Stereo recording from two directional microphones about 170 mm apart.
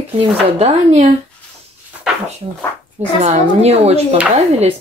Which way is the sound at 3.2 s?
40° right (ahead or behind).